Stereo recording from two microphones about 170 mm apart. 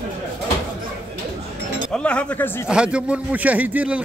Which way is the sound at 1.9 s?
5° left (ahead or behind).